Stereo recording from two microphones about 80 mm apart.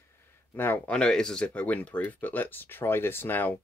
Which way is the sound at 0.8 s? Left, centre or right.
Centre.